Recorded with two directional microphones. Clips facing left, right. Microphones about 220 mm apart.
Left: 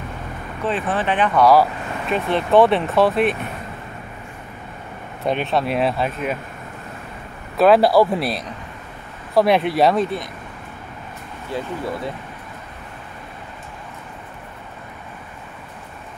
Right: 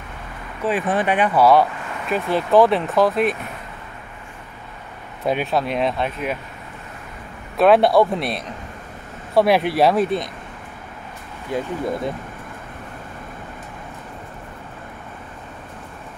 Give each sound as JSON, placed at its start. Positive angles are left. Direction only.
{"t": 0.7, "sound": "speech", "side_deg": -10}
{"t": 5.2, "sound": "speech", "side_deg": -5}
{"t": 7.5, "sound": "speech", "side_deg": 0}
{"t": 11.5, "sound": "speech", "side_deg": -20}